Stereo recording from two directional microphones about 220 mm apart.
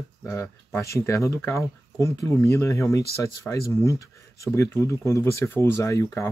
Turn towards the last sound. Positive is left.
turn(degrees=15)  # may be behind; listen again after turning